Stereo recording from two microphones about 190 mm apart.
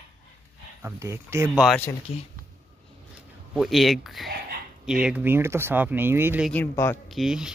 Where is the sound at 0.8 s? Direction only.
15° right (ahead or behind).